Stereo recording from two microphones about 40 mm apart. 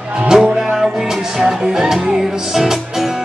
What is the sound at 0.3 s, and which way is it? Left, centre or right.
Music, centre.